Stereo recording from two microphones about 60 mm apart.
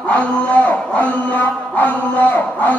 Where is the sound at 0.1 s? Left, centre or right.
Left.